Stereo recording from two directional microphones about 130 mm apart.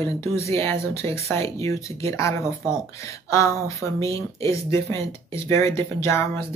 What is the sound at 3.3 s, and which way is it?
Speech, 25° left (ahead or behind).